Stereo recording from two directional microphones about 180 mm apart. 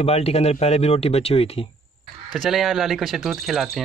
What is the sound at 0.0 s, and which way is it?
Speech, 35° left (ahead or behind).